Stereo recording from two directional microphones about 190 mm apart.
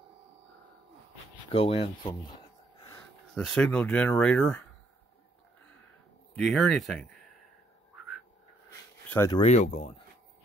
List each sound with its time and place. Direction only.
1.5 s speech: 30° left (ahead or behind)
3.3 s speech: 5° left (ahead or behind)
6.3 s speech: centre (ahead or behind)
8.6 s a sound: 15° left (ahead or behind)
9.3 s speech: 35° left (ahead or behind)